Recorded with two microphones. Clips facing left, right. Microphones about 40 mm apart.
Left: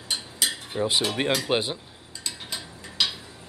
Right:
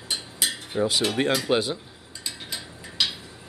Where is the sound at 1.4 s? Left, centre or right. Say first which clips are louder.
Right 2 dB; left.